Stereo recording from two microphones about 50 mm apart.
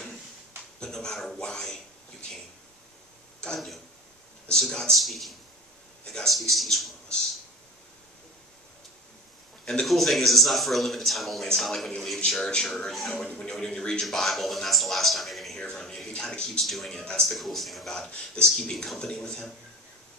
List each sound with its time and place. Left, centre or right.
0.7 s speech: centre
3.5 s a man's voice: centre
4.9 s a man's voice: centre
9.8 s a man's voice: centre
13.2 s speech: centre
14.0 s a man's voice: centre
15.6 s speech: centre
16.6 s a man's voice: centre
17.9 s speech: centre